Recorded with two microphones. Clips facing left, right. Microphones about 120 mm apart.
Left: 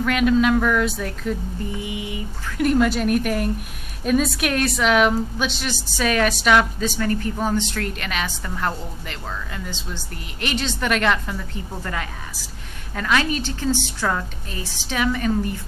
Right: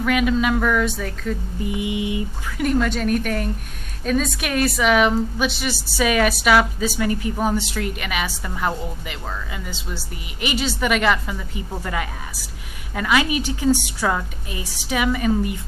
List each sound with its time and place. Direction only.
0.0 s a woman's voice: centre (ahead or behind)
1.6 s mantra: 15° right (ahead or behind)
2.5 s a woman's voice: centre (ahead or behind)